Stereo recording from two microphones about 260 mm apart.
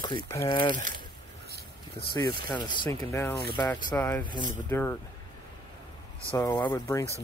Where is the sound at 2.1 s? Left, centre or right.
Centre.